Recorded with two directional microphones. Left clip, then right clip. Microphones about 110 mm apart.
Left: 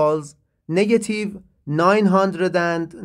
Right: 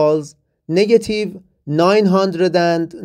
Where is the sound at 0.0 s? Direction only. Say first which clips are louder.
Right 4 dB; 20° right (ahead or behind).